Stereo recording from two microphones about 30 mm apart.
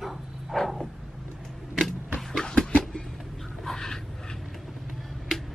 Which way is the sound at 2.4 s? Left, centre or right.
Left.